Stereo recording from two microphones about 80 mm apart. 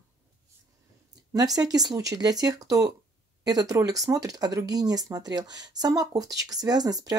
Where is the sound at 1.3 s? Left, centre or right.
Right.